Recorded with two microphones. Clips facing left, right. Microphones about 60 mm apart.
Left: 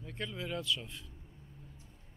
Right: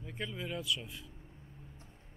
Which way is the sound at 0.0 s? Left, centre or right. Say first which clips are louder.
Even; centre.